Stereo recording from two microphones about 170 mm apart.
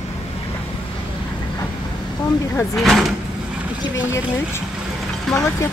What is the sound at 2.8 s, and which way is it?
Speech, centre (ahead or behind).